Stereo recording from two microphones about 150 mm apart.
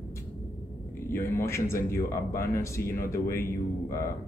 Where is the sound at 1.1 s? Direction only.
15° left (ahead or behind).